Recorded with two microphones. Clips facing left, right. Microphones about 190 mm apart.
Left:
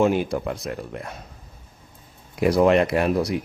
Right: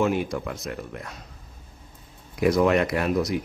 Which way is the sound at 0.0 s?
30° left (ahead or behind).